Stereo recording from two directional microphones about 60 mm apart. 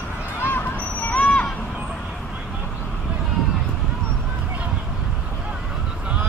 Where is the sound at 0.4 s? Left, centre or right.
Left.